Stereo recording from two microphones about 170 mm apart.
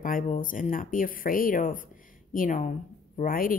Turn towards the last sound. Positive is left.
turn(degrees=55)  # may be behind; listen again after turning